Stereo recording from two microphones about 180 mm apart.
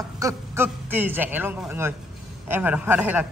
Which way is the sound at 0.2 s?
15° right (ahead or behind).